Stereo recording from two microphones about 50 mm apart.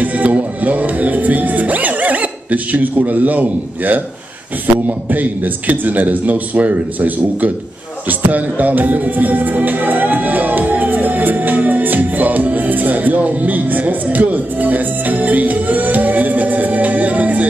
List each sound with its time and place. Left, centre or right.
0.0 s music: right
4.8 s speech: right
8.1 s music: right